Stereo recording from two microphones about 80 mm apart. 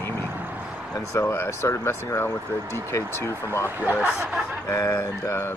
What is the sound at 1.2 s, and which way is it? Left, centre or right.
Speech, left.